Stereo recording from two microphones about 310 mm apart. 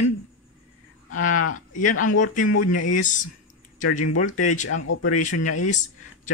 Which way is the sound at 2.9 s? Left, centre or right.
Left.